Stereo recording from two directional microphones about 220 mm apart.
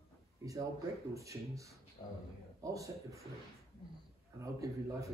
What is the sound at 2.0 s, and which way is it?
Speech, 25° left (ahead or behind).